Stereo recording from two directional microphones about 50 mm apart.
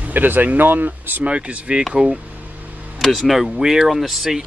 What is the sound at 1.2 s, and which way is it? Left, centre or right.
Speech, right.